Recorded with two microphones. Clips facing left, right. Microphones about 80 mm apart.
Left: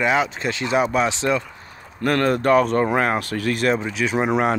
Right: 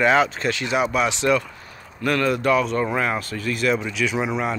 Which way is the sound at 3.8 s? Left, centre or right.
Left.